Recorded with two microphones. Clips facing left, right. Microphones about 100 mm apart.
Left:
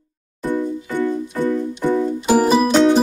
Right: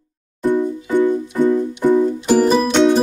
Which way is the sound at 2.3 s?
10° left (ahead or behind).